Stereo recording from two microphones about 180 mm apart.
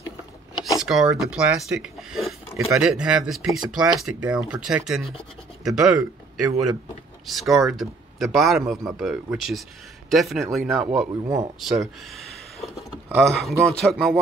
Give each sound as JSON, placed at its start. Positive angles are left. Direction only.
{"t": 0.6, "sound": "vehicle", "side_deg": 20}
{"t": 0.8, "sound": "speech", "side_deg": 0}
{"t": 11.1, "sound": "speech", "side_deg": -20}
{"t": 11.6, "sound": "speech", "side_deg": 0}